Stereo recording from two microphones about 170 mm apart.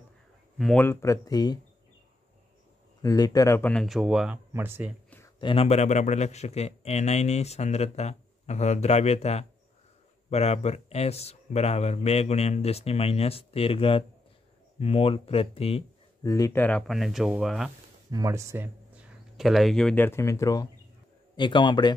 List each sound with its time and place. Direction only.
0.6 s speech: centre (ahead or behind)
0.8 s speech: 20° left (ahead or behind)
3.0 s speech: 20° left (ahead or behind)
3.8 s speech: 5° right (ahead or behind)
5.4 s speech: 30° left (ahead or behind)
16.2 s speech: 20° left (ahead or behind)
16.8 s speech: centre (ahead or behind)
18.1 s speech: 20° right (ahead or behind); by 21.9 s 25° left (ahead or behind)